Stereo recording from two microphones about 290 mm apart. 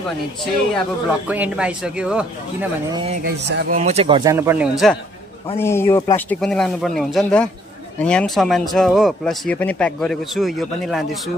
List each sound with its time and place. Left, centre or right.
0.7 s speech: centre
2.9 s a man's voice: centre
3.4 s a man's voice: right; by 4.9 s centre
5.6 s speech: centre